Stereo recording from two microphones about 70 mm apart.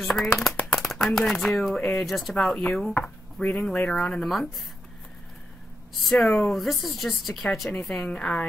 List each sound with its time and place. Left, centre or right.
0.1 s speech: centre
0.7 s shuffling cards: centre
1.0 s a woman's voice: centre
1.8 s a woman's voice: centre
2.0 s speech: centre
2.3 s a woman's voice: centre
6.0 s speech: centre
7.9 s a woman's voice: centre